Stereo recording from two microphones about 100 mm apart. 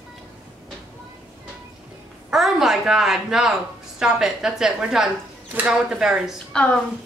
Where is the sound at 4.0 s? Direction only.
5° right (ahead or behind).